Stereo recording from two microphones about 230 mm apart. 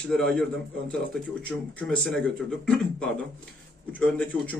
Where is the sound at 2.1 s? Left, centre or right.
Centre.